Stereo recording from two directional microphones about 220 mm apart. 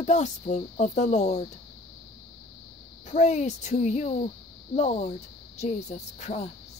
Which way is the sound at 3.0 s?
30° left (ahead or behind).